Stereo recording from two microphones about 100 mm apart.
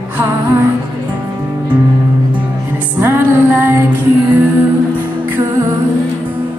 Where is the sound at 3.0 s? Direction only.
20° right (ahead or behind).